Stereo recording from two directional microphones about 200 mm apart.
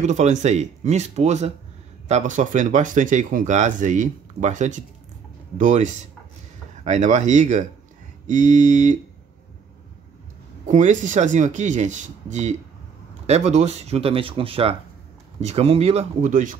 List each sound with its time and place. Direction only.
0.0 s speech: 35° right (ahead or behind)
10.7 s speech: 40° right (ahead or behind)